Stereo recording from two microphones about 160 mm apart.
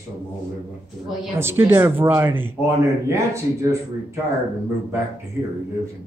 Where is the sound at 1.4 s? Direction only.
15° right (ahead or behind).